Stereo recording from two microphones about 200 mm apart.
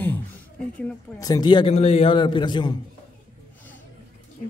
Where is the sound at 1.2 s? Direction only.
20° left (ahead or behind).